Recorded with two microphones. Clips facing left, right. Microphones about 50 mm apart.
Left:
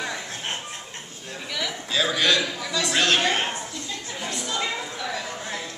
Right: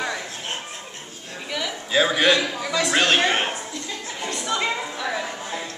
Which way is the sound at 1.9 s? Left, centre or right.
Right.